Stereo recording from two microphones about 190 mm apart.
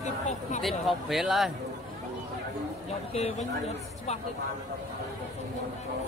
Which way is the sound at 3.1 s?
35° left (ahead or behind).